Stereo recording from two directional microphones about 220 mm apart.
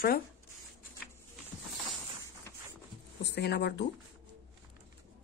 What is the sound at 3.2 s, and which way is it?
Speech, 50° left (ahead or behind).